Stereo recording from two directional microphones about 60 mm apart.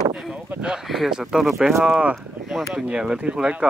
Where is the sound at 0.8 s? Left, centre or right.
Centre.